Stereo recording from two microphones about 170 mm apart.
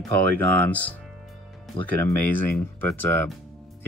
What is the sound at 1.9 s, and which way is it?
Speech, 10° left (ahead or behind).